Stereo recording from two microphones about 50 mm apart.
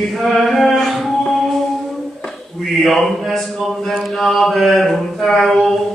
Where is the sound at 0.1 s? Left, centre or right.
Centre.